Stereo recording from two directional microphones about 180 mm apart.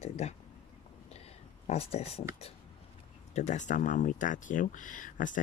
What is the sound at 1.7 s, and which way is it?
Speech, 35° left (ahead or behind).